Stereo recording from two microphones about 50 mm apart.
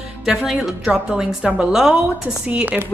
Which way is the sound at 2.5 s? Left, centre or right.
Right.